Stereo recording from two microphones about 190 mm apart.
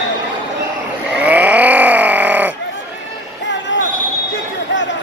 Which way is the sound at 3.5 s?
70° left (ahead or behind).